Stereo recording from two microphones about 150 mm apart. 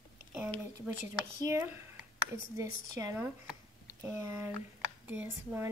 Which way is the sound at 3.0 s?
15° right (ahead or behind).